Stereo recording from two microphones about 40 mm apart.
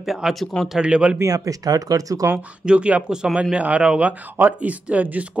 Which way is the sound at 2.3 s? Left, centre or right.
Right.